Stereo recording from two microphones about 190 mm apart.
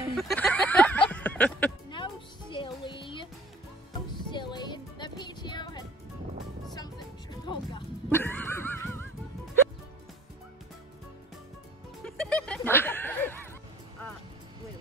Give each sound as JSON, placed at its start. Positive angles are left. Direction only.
{"t": 0.1, "sound": "music", "side_deg": 0}
{"t": 2.5, "sound": "music", "side_deg": 25}
{"t": 8.1, "sound": "dog", "side_deg": 10}
{"t": 12.0, "sound": "music", "side_deg": 5}